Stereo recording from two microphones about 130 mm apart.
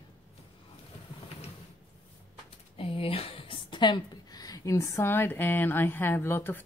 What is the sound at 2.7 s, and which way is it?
A woman's voice, 45° left (ahead or behind).